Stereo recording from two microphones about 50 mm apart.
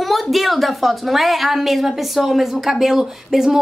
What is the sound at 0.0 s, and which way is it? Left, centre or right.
A woman's voice, centre.